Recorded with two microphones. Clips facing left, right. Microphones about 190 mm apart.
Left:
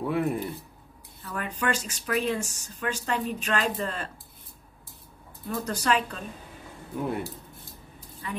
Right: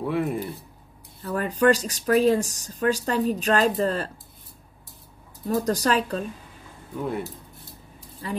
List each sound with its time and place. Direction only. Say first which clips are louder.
0.0 s speech: right 1 dB; centre (ahead or behind)
1.2 s speech: right 10 dB; 40° right (ahead or behind)
5.5 s speech: right 5 dB; 40° right (ahead or behind)
8.2 s speech: right 5 dB; 35° right (ahead or behind)